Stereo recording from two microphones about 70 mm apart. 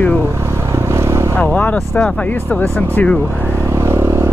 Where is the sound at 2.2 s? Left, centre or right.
Left.